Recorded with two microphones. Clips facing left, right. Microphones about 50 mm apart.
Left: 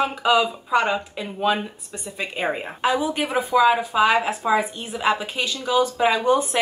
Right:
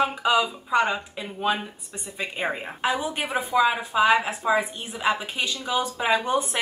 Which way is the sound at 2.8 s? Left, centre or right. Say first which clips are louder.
Left 4 dB; centre.